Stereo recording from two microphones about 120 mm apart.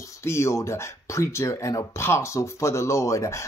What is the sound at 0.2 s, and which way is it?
Speech, 20° left (ahead or behind).